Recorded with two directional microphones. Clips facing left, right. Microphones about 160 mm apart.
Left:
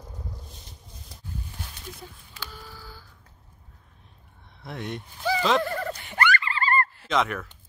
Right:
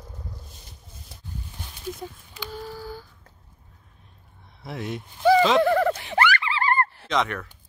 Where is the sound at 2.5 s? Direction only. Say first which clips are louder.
Right 10 dB; 45° right (ahead or behind).